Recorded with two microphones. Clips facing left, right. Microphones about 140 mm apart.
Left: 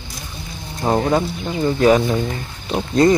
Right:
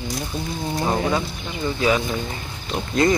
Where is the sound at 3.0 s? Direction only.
35° left (ahead or behind).